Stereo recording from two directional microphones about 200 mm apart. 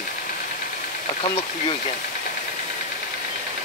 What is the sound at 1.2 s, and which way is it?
Speech, 25° left (ahead or behind).